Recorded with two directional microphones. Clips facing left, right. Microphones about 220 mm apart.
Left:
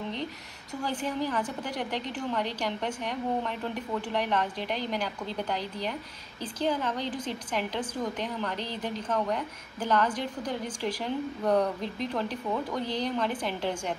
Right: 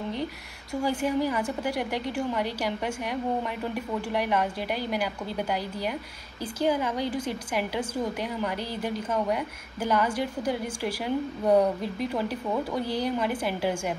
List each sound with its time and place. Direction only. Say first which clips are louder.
0.8 s a woman's voice: right 5 dB; 10° right (ahead or behind)